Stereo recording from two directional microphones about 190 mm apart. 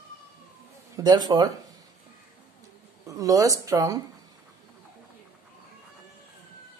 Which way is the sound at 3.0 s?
15° right (ahead or behind).